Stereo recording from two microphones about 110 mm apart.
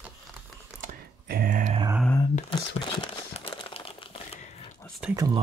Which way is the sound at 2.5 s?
50° left (ahead or behind).